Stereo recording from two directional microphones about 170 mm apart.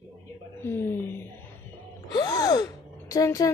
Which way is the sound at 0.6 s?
10° left (ahead or behind).